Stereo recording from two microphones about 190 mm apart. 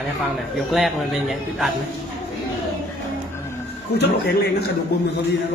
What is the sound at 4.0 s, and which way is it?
Speech, 60° left (ahead or behind).